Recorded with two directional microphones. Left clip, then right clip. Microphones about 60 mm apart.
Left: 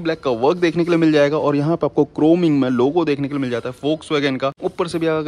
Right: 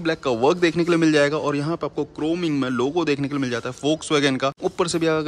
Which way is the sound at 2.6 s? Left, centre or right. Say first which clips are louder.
Left 5 dB; right.